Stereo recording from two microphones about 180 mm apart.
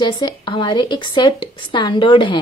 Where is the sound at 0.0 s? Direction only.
25° left (ahead or behind).